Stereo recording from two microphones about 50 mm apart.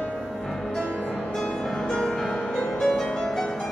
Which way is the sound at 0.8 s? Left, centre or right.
Centre.